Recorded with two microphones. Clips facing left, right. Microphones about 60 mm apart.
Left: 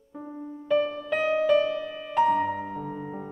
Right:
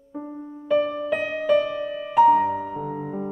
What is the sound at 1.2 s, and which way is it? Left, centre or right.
Music, centre.